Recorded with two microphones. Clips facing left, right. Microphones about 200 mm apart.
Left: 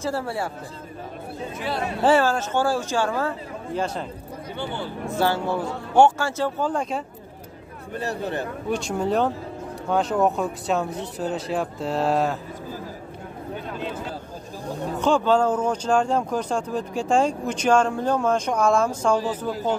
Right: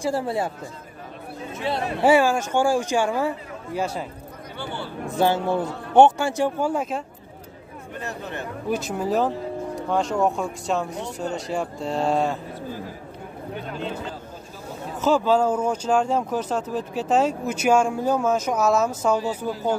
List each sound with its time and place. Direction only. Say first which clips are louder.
0.0 s speech: right 3 dB; 15° right (ahead or behind)
2.0 s speech: right 2 dB; 10° right (ahead or behind)
5.1 s speech: right 2 dB; 20° right (ahead or behind)
7.9 s speech: left 5 dB; 35° left (ahead or behind)
8.6 s speech: even; 5° right (ahead or behind)
15.0 s speech: even; 5° right (ahead or behind)